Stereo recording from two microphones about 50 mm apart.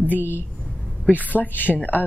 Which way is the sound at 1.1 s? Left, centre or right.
Left.